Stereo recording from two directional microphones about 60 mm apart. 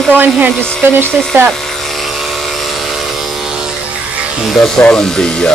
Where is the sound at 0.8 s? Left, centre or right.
Right.